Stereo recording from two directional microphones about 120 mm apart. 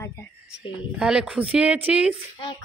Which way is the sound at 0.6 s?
5° right (ahead or behind).